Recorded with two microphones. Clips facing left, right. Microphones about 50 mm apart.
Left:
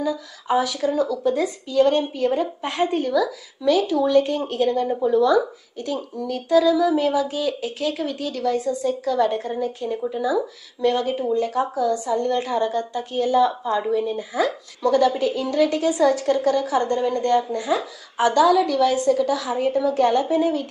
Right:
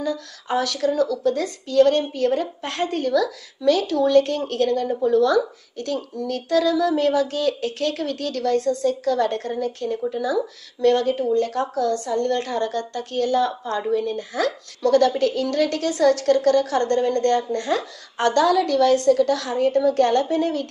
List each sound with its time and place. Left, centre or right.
0.0 s a woman's voice: centre